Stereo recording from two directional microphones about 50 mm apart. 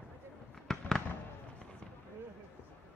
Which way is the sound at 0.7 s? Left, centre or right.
Centre.